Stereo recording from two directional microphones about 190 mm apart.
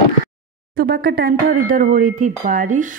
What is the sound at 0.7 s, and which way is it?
Speech, 55° right (ahead or behind).